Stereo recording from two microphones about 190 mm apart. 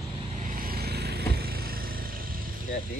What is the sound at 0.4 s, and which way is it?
Vehicle, 45° right (ahead or behind).